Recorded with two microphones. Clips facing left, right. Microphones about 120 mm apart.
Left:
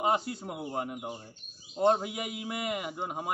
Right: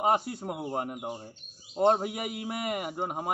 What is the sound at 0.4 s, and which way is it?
Speech, 15° right (ahead or behind).